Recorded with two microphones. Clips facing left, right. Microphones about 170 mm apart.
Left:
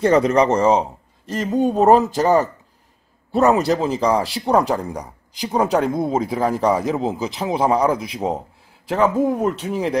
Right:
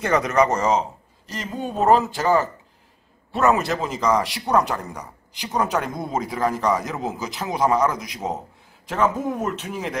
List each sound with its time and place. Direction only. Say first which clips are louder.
0.0 s speech: left 4 dB; 30° left (ahead or behind)
1.3 s speech: left 10 dB; 45° left (ahead or behind)
3.5 s speech: left 6 dB; 35° left (ahead or behind)